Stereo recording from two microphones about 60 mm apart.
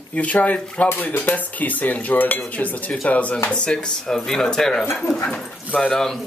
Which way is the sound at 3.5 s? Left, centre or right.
Centre.